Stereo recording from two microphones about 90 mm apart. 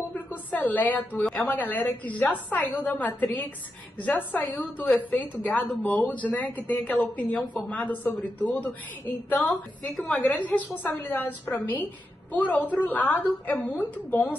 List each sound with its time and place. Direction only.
0.1 s a sound: 20° left (ahead or behind)
1.3 s a woman's voice: 20° left (ahead or behind)
9.9 s a woman's voice: 5° left (ahead or behind)